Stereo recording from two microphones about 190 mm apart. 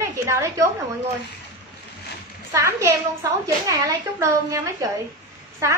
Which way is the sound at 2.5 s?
15° right (ahead or behind).